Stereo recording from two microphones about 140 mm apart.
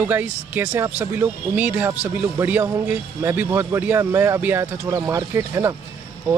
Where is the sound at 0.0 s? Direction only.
15° right (ahead or behind).